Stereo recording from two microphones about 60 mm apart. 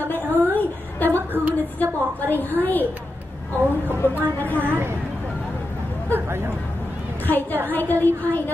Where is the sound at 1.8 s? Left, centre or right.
Left.